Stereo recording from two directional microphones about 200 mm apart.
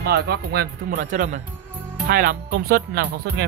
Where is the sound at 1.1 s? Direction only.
40° right (ahead or behind).